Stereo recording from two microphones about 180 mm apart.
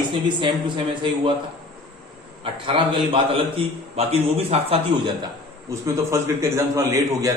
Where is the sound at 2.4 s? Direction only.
30° right (ahead or behind).